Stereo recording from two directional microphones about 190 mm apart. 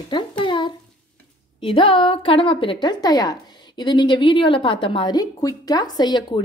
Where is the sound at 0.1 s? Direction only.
25° left (ahead or behind).